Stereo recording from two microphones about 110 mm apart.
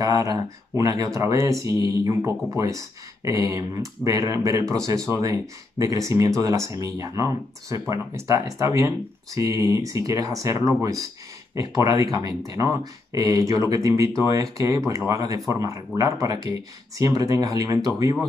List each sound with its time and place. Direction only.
0.0 s speech: 35° right (ahead or behind)